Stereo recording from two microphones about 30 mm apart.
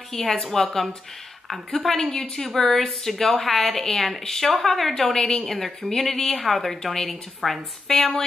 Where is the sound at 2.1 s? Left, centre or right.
Left.